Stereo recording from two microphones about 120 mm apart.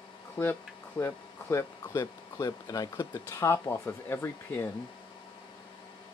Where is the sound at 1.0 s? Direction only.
20° left (ahead or behind).